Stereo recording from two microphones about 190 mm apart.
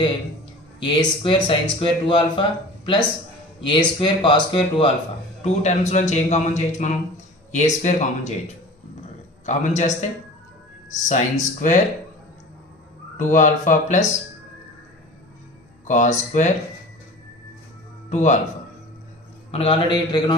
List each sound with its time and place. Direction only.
0.7 s speech: 25° left (ahead or behind)
5.4 s a man's voice: 35° left (ahead or behind)
9.5 s a man's voice: 40° left (ahead or behind)
11.1 s a man's voice: 40° left (ahead or behind)
13.2 s a man's voice: 40° left (ahead or behind)
15.9 s a man's voice: 40° left (ahead or behind)
18.1 s a man's voice: 40° left (ahead or behind)
19.5 s speech: 30° left (ahead or behind)